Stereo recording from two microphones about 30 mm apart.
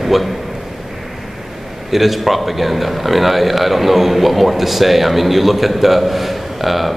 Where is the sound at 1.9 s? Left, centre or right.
Centre.